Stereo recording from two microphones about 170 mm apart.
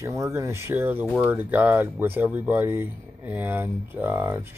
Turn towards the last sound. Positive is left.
turn(degrees=-10)  # may be behind; listen again after turning